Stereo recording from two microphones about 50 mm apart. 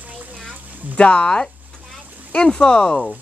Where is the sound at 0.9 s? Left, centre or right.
Left.